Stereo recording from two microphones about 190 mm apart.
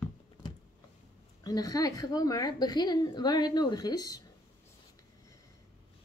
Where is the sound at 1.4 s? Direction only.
20° left (ahead or behind).